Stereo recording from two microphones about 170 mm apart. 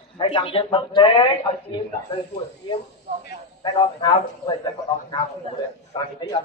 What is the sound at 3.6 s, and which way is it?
Speech, 25° left (ahead or behind).